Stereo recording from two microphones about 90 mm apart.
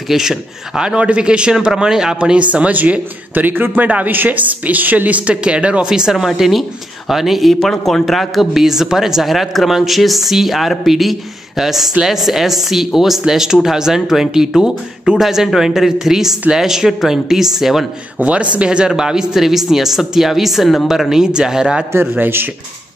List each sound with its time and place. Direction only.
0.1 s speech: 5° right (ahead or behind)
18.2 s speech: 15° right (ahead or behind)
21.9 s speech: 20° right (ahead or behind)